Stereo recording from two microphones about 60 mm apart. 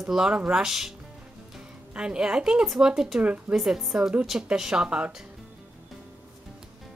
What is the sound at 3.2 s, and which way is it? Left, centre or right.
Speech, right.